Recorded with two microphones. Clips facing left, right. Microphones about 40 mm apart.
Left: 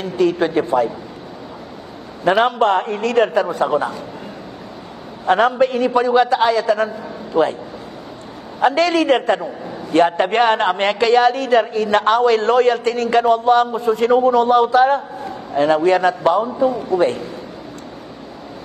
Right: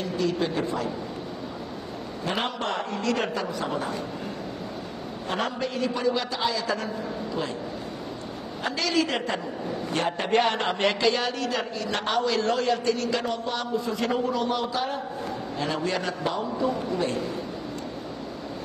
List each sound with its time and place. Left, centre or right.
0.0 s a woman's voice: left
2.2 s a woman's voice: left
5.2 s a woman's voice: left
7.3 s a man's voice: left
8.5 s a woman's voice: left